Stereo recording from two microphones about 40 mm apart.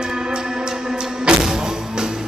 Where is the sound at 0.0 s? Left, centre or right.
Right.